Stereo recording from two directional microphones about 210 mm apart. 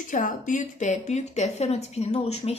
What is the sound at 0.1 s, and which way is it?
A woman's voice, 35° left (ahead or behind).